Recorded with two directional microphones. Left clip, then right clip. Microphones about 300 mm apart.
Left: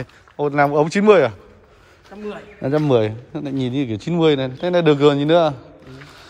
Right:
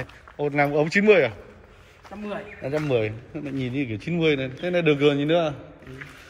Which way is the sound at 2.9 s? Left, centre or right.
Left.